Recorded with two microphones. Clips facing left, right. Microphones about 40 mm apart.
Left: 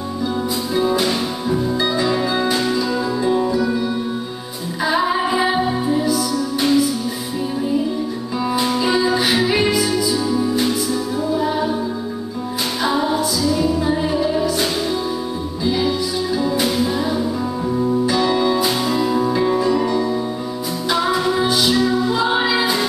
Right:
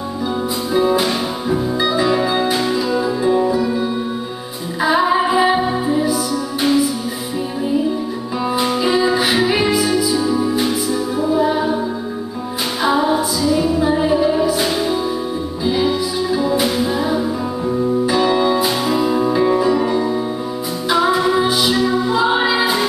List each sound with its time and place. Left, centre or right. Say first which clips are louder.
0.7 s music: right 3 dB; centre
4.8 s music: right 3 dB; centre
8.5 s music: right 2 dB; centre
12.8 s music: right 3 dB; centre